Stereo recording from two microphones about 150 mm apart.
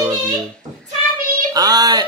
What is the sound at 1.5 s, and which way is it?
Speech, 25° right (ahead or behind).